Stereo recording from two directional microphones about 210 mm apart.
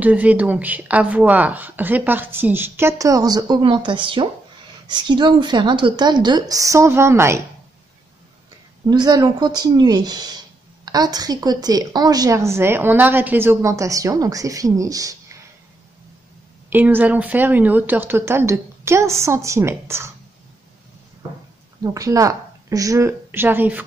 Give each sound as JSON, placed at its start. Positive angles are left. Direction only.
{"t": 0.0, "sound": "a woman's voice", "side_deg": -5}
{"t": 8.8, "sound": "a woman's voice", "side_deg": -20}
{"t": 16.7, "sound": "a woman's voice", "side_deg": -10}
{"t": 21.9, "sound": "a woman's voice", "side_deg": -15}